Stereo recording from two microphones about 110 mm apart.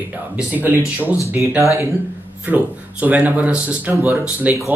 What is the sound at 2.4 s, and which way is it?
Speech, 15° right (ahead or behind).